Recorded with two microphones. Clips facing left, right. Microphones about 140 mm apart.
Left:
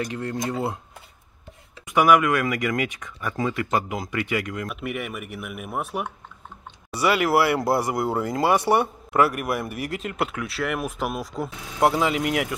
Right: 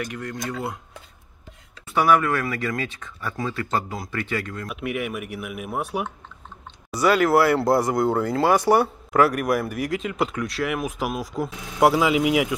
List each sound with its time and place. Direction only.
0.0 s speech: 30° left (ahead or behind)
1.9 s speech: 15° left (ahead or behind)
4.6 s speech: centre (ahead or behind)